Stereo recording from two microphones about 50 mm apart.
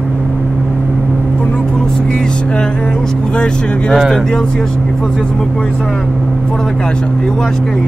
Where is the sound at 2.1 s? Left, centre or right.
Centre.